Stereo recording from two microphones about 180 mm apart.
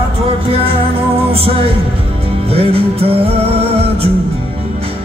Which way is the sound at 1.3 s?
30° right (ahead or behind).